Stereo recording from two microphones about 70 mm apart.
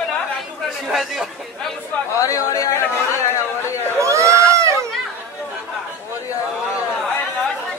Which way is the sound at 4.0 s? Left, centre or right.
Right.